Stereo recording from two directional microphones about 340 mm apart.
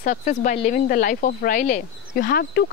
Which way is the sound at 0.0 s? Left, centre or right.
Left.